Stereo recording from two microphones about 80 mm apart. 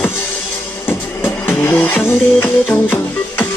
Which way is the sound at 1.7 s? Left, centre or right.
Left.